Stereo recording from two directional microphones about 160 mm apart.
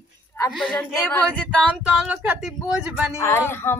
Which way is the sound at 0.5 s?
Centre (ahead or behind).